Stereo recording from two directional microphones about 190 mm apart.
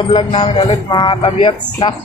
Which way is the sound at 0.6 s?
25° left (ahead or behind).